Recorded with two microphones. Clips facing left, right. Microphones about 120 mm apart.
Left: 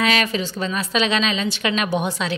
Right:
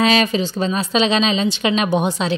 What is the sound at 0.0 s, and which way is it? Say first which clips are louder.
A woman's voice: right 4 dB; 25° right (ahead or behind).